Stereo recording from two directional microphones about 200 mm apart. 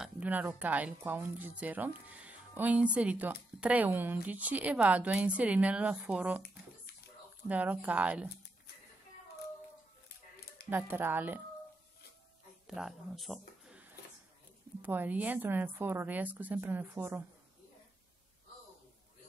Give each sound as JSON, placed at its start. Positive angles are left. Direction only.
{"t": 0.0, "sound": "speech", "side_deg": -10}
{"t": 7.4, "sound": "speech", "side_deg": -10}
{"t": 10.7, "sound": "speech", "side_deg": -10}
{"t": 12.6, "sound": "speech", "side_deg": 0}